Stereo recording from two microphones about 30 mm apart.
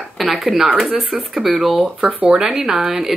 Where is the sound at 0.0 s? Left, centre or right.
Centre.